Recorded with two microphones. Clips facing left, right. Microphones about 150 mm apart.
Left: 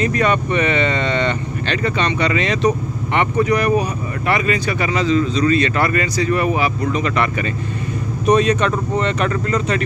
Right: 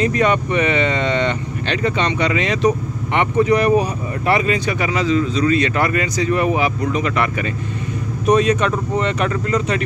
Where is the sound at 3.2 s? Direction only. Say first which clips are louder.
Right 2 dB; 25° right (ahead or behind).